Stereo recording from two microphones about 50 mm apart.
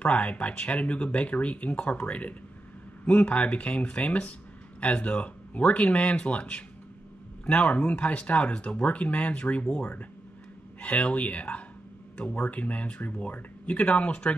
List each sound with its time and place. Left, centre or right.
0.0 s speech: left